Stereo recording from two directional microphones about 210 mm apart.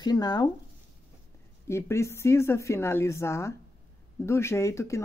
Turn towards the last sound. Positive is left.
turn(degrees=15)  # may be behind; listen again after turning